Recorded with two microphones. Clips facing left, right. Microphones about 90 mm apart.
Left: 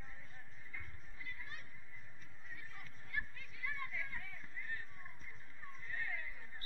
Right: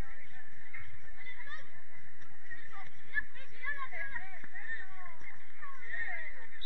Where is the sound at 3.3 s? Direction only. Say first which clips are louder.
Right 3 dB; 50° right (ahead or behind).